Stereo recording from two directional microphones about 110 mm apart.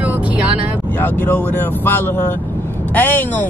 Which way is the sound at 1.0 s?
15° left (ahead or behind).